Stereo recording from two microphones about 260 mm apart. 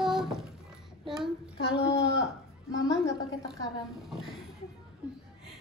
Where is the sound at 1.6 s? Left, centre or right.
Left.